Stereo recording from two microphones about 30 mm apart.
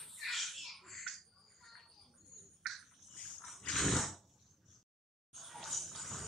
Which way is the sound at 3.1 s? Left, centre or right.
Centre.